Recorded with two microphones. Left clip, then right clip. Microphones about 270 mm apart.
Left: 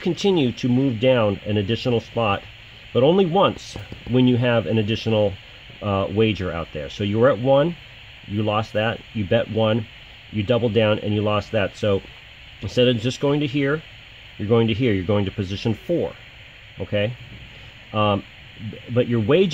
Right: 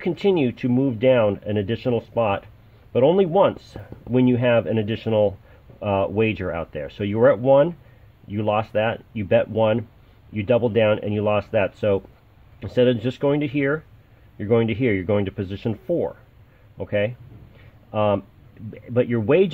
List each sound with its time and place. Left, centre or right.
0.0 s speech: centre